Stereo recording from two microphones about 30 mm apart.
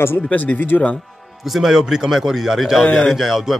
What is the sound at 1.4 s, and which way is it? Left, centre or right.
A man's voice, centre.